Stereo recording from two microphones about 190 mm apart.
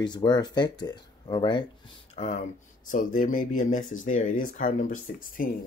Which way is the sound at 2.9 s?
45° left (ahead or behind).